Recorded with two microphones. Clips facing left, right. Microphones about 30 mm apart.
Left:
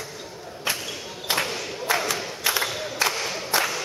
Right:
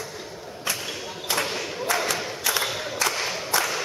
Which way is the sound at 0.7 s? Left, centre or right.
Centre.